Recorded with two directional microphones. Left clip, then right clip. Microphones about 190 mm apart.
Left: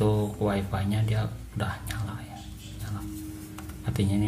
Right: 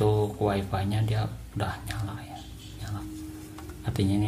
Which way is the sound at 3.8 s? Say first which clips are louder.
Right 1 dB; 20° right (ahead or behind).